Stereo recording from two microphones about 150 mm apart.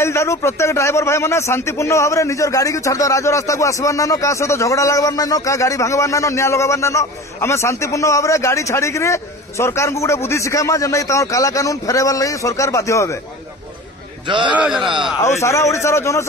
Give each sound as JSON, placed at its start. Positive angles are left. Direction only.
{"t": 0.0, "sound": "a man's voice", "side_deg": 20}
{"t": 14.2, "sound": "a man's voice", "side_deg": -30}
{"t": 14.5, "sound": "a man's voice", "side_deg": -5}
{"t": 15.2, "sound": "a man's voice", "side_deg": 20}